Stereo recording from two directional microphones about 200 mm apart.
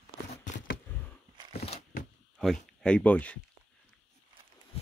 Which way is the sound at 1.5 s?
30° left (ahead or behind).